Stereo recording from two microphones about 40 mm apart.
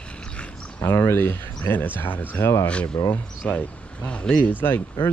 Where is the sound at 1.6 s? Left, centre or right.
Left.